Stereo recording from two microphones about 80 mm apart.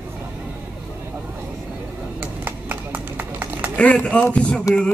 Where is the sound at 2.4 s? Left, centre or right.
Right.